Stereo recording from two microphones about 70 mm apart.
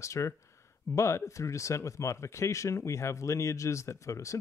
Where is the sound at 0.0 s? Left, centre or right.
Left.